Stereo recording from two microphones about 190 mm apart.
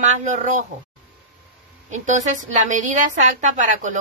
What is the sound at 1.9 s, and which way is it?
A woman's voice, 40° right (ahead or behind).